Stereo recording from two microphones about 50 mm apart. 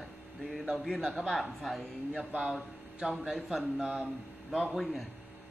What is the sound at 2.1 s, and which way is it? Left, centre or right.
Speech, right.